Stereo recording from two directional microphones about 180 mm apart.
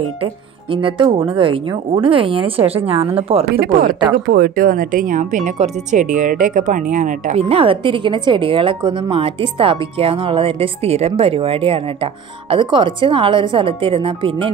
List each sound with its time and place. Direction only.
0.2 s speech: 30° right (ahead or behind)
3.4 s speech: 55° right (ahead or behind); by 14.5 s 30° right (ahead or behind)